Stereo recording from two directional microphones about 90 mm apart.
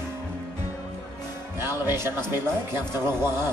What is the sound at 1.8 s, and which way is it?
Speech, 25° right (ahead or behind).